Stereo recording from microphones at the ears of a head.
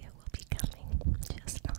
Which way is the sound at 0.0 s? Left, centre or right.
Right.